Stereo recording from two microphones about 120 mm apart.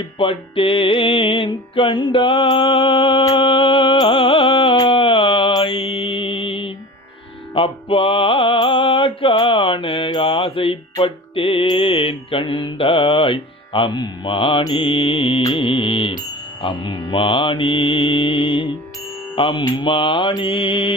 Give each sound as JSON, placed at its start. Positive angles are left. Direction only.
{"t": 0.0, "sound": "music", "side_deg": 45}
{"t": 4.7, "sound": "a sound", "side_deg": 45}
{"t": 5.5, "sound": "mantra", "side_deg": 45}
{"t": 7.5, "sound": "music", "side_deg": 45}
{"t": 19.3, "sound": "mantra", "side_deg": 45}
{"t": 19.8, "sound": "music", "side_deg": 45}